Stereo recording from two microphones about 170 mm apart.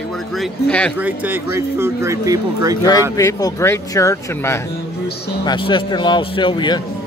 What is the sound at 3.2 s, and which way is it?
Speech, 20° left (ahead or behind).